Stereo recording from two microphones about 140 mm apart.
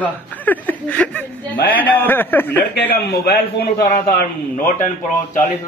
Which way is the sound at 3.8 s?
90° left.